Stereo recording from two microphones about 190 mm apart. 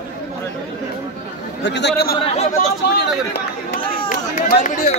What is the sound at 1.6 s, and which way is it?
Speech, 65° left (ahead or behind).